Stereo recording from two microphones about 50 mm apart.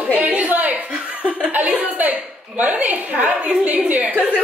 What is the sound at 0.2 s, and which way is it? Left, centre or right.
Chuckle, right.